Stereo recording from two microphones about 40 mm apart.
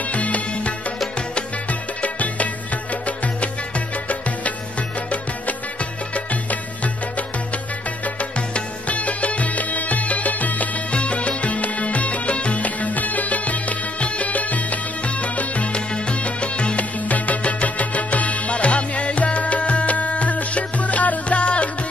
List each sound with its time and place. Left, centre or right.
0.1 s music: left
5.8 s music: left
10.9 s music: left